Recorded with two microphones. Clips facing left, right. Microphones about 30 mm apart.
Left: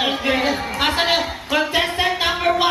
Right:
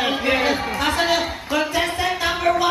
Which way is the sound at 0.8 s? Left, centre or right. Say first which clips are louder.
Left 2 dB; left.